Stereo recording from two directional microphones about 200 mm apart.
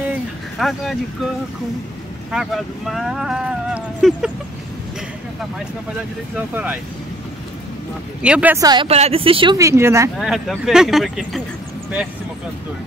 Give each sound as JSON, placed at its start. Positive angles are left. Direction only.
{"t": 0.6, "sound": "speech", "side_deg": 0}
{"t": 2.3, "sound": "speech", "side_deg": 0}
{"t": 6.3, "sound": "speech", "side_deg": -10}
{"t": 8.2, "sound": "speech", "side_deg": -5}
{"t": 8.6, "sound": "a woman's voice", "side_deg": -25}
{"t": 10.2, "sound": "speech", "side_deg": 0}